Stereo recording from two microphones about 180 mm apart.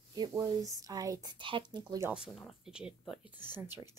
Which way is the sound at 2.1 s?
Centre (ahead or behind).